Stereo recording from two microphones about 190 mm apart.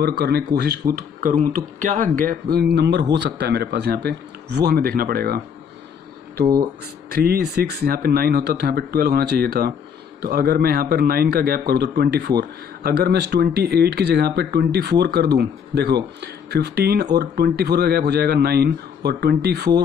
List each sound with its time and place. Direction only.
0.0 s speech: 60° right (ahead or behind)
0.9 s speech: 45° right (ahead or behind)
7.1 s speech: 55° right (ahead or behind)